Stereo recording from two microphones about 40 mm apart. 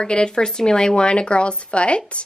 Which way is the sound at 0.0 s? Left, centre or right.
Left.